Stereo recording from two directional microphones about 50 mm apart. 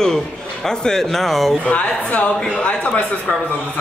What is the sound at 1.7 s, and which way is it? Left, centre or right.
A woman's voice, left.